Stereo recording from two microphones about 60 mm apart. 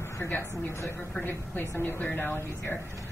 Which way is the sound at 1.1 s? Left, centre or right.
Left.